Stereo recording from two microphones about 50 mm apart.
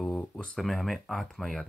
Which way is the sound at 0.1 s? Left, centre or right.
Left.